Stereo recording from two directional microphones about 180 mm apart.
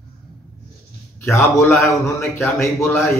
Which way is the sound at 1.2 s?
15° left (ahead or behind).